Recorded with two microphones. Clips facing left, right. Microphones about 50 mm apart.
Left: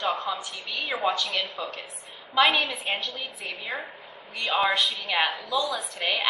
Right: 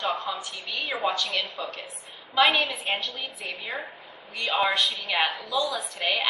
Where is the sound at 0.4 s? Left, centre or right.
Centre.